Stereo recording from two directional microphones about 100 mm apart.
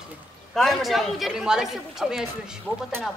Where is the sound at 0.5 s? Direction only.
Centre (ahead or behind).